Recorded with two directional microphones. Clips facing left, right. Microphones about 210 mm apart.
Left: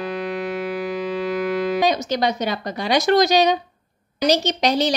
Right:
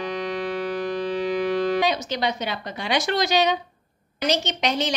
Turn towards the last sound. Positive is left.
turn(degrees=35)  # may be behind; listen again after turning